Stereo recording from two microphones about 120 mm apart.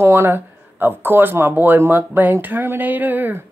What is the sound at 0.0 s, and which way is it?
Speech, 20° right (ahead or behind).